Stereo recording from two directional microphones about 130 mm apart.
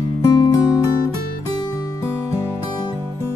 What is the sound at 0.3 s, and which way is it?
Music, 30° left (ahead or behind).